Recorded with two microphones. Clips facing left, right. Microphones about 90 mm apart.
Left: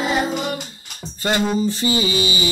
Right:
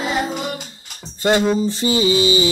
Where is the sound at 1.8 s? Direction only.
30° right (ahead or behind).